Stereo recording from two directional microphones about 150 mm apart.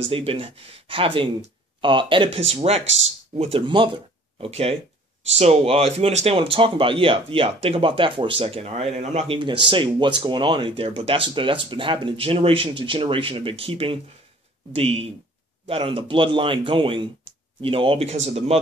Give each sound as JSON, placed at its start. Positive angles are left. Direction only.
{"t": 0.1, "sound": "speech", "side_deg": -40}
{"t": 9.4, "sound": "speech", "side_deg": -35}